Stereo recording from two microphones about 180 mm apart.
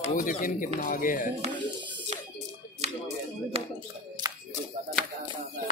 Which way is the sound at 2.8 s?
40° right (ahead or behind).